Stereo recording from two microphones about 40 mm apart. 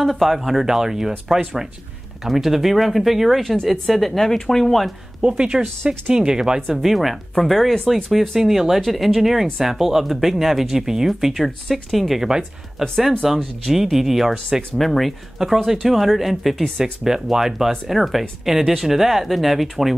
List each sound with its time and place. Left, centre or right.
0.0 s speech: centre
5.2 s speech: right
6.9 s speech: centre
12.3 s speech: centre
13.2 s speech: centre
14.8 s speech: centre
15.3 s speech: centre